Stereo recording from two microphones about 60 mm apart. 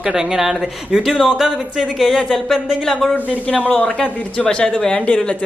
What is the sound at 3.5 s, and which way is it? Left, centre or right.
Speech, left.